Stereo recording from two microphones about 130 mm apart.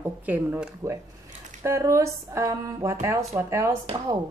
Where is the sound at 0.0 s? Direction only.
15° right (ahead or behind).